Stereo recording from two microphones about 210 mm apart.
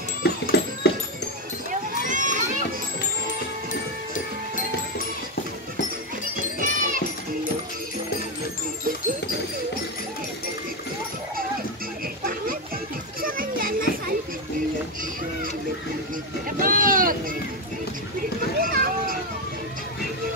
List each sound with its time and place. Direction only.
0.2 s a sound: 50° left (ahead or behind)
1.7 s run: 35° right (ahead or behind)
6.6 s music: 40° right (ahead or behind)
13.2 s children playing: 40° right (ahead or behind)
16.4 s a sound: 40° right (ahead or behind)
18.6 s boat: 45° right (ahead or behind)